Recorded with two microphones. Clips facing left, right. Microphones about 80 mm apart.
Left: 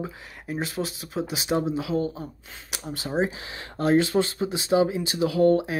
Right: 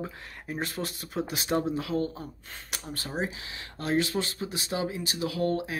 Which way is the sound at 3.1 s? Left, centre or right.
Left.